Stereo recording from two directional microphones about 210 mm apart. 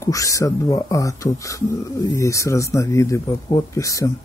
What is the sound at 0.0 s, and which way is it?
Speech, 15° left (ahead or behind).